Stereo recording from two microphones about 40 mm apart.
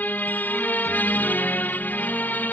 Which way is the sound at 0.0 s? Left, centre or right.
Left.